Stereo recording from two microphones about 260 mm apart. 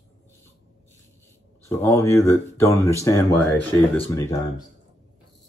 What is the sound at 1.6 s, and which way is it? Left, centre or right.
Speech, centre.